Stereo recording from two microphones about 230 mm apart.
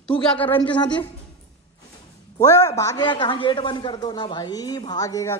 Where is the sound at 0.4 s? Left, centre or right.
Centre.